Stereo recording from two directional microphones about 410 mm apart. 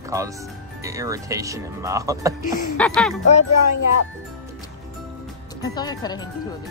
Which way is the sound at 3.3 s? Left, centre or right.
Left.